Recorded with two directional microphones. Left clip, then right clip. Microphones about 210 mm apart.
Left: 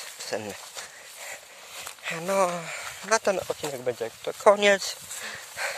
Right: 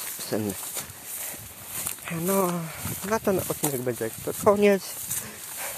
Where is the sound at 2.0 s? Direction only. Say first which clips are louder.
Left 2 dB; 45° left (ahead or behind).